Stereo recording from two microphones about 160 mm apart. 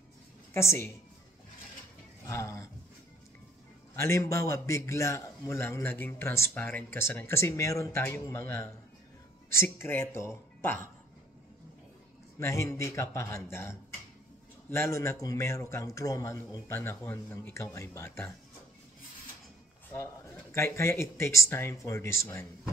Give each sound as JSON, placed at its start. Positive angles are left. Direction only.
{"t": 0.5, "sound": "a man's voice", "side_deg": 15}
{"t": 2.2, "sound": "speech", "side_deg": 20}
{"t": 3.9, "sound": "a man's voice", "side_deg": 15}
{"t": 12.4, "sound": "a man's voice", "side_deg": 15}
{"t": 20.5, "sound": "a man's voice", "side_deg": 15}